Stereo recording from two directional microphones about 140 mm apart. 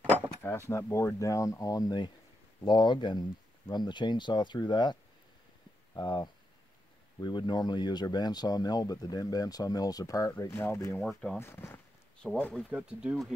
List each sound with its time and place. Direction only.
0.4 s speech: 20° left (ahead or behind)
5.9 s speech: 30° left (ahead or behind)
11.0 s speech: 5° left (ahead or behind)
11.3 s a sound: 15° left (ahead or behind)
12.3 s speech: 10° left (ahead or behind)
12.6 s speech: 5° right (ahead or behind)